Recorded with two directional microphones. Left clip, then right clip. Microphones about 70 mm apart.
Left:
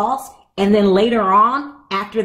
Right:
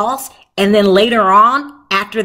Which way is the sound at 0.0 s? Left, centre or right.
Right.